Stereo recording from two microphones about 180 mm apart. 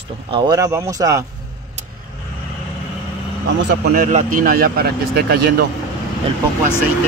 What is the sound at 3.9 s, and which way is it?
A man's voice, 45° right (ahead or behind).